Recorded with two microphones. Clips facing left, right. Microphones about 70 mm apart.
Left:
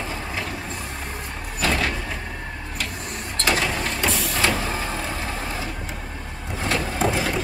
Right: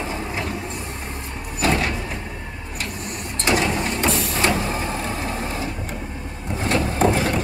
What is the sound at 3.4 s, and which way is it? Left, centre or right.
Printer, right.